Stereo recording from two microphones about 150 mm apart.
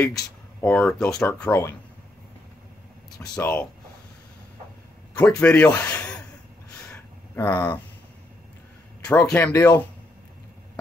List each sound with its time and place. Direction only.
0.6 s speech: 10° left (ahead or behind)
3.3 s speech: 15° left (ahead or behind)
5.1 s speech: 10° left (ahead or behind)
5.9 s a sound: 10° left (ahead or behind)
7.3 s speech: 15° left (ahead or behind)
9.0 s a man's voice: 10° left (ahead or behind)
9.4 s speech: 20° left (ahead or behind)